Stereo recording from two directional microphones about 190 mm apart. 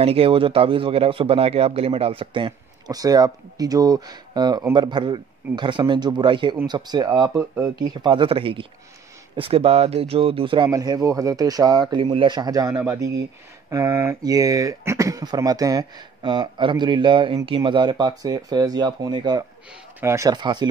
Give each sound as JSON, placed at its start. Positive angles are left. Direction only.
{"t": 0.0, "sound": "a man's voice", "side_deg": -30}